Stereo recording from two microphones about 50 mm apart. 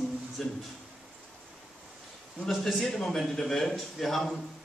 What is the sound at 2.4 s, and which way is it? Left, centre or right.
A man's voice, centre.